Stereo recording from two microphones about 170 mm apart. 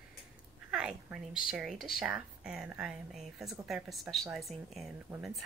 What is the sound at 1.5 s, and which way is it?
Speech, centre (ahead or behind).